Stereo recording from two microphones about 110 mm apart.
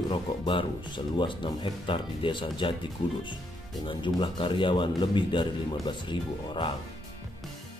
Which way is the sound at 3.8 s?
45° left (ahead or behind).